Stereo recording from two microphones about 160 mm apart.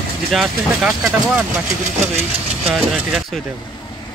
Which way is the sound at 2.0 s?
40° right (ahead or behind).